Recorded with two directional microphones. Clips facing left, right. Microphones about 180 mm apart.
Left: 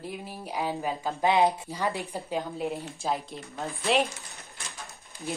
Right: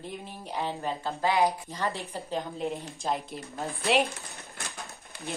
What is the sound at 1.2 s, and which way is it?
A woman's voice, 20° left (ahead or behind).